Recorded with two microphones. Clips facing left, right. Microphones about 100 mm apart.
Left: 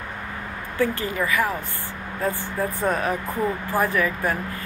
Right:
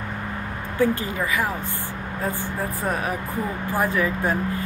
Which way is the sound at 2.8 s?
5° right (ahead or behind).